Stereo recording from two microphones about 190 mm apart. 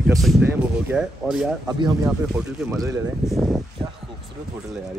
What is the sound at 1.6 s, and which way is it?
Speech, 25° right (ahead or behind).